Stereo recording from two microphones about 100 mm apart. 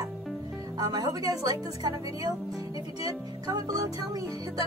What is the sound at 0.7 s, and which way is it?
Music, 40° right (ahead or behind).